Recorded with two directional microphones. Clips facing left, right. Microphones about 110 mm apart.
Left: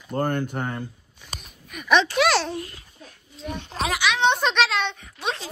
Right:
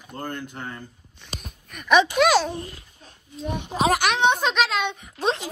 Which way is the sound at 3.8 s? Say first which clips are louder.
Right 3 dB; 45° right (ahead or behind).